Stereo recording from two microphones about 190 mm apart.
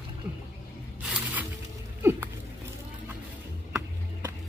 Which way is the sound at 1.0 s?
5° right (ahead or behind).